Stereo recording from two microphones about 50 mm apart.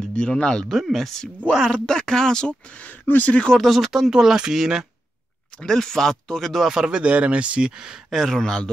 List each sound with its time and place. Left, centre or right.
0.1 s speech: centre
0.7 s speech: centre
1.7 s speech: centre
2.7 s speech: left
3.6 s speech: centre
5.6 s speech: centre
6.7 s speech: centre
8.1 s speech: centre